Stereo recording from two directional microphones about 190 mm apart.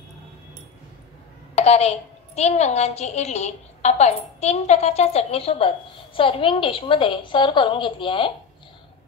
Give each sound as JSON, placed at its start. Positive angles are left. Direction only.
{"t": 1.5, "sound": "a woman's voice", "side_deg": 35}